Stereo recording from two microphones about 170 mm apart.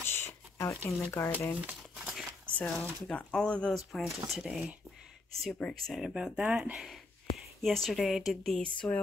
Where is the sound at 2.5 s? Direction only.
10° left (ahead or behind).